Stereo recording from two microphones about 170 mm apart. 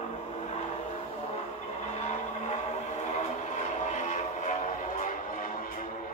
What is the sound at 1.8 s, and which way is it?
Vehicle, 40° left (ahead or behind).